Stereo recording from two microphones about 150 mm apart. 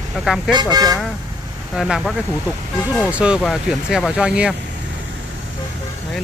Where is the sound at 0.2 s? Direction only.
Centre (ahead or behind).